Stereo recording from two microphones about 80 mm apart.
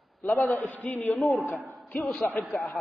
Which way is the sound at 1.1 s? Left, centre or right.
Centre.